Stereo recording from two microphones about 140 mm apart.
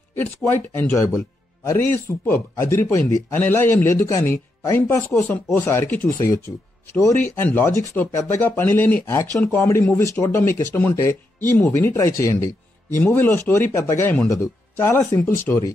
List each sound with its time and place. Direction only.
0.1 s speech: 15° left (ahead or behind)
2.2 s a man's voice: 20° left (ahead or behind)
13.0 s speech: 15° left (ahead or behind)